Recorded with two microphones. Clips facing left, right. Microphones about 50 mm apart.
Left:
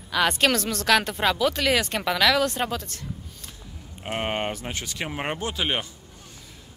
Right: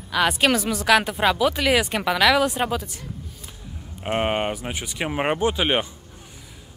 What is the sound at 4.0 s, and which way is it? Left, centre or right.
Speech, centre.